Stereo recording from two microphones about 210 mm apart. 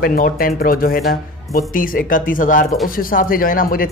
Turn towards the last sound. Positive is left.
turn(degrees=45)  # may be behind; listen again after turning